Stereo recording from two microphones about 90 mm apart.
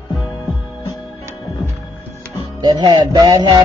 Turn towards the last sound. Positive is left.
turn(degrees=-50)  # may be behind; listen again after turning